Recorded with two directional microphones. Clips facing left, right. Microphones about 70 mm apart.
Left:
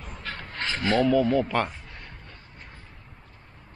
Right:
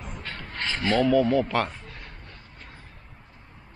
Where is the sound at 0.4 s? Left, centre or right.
Left.